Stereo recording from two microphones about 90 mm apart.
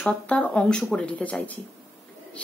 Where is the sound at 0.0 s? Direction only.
15° left (ahead or behind).